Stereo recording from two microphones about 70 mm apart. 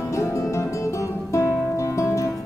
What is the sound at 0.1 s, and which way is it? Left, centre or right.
Music, left.